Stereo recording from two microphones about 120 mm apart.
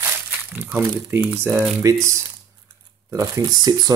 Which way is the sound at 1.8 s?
25° right (ahead or behind).